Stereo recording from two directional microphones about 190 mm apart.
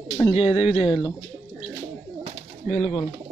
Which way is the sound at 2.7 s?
40° left (ahead or behind).